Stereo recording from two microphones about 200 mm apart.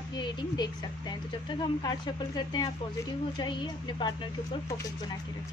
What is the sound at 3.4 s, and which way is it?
Speech, 25° left (ahead or behind).